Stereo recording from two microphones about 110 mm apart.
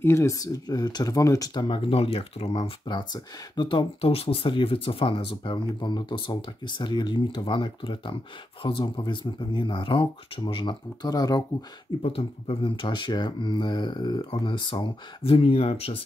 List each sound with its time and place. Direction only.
0.0 s speech: 25° left (ahead or behind)
1.5 s speech: 45° left (ahead or behind); by 2.5 s 60° left (ahead or behind)
2.5 s speech: 45° left (ahead or behind)
12.4 s speech: 50° left (ahead or behind)